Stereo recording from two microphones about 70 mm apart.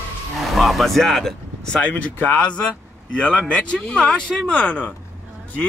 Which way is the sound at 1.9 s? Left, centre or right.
Left.